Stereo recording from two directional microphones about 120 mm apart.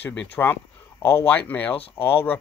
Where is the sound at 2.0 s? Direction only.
20° left (ahead or behind).